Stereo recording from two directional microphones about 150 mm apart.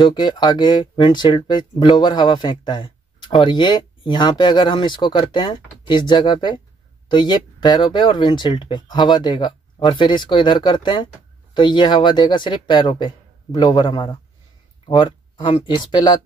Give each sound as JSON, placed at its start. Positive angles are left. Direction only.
{"t": 0.0, "sound": "speech", "side_deg": 30}